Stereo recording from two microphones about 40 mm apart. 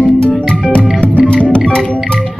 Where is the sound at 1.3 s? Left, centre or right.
Left.